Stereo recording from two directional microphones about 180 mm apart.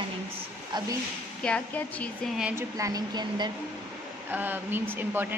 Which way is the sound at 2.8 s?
20° right (ahead or behind).